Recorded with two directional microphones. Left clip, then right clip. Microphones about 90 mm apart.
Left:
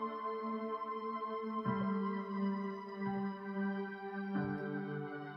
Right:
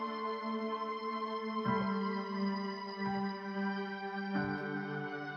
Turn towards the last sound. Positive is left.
turn(degrees=-25)  # may be behind; listen again after turning